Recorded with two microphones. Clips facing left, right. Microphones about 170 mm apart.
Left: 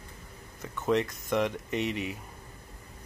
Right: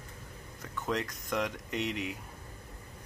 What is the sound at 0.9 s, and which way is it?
Speech, 5° left (ahead or behind).